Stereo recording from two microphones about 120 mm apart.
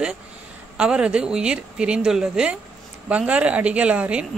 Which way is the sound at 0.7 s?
10° right (ahead or behind).